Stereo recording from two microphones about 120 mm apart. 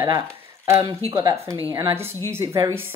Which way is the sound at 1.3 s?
25° right (ahead or behind).